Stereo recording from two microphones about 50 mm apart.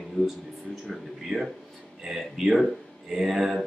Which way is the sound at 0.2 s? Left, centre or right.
Left.